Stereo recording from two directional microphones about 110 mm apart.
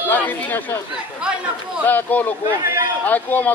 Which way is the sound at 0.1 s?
15° left (ahead or behind).